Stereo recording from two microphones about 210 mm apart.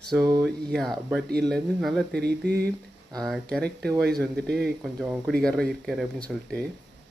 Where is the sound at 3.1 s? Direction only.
Centre (ahead or behind).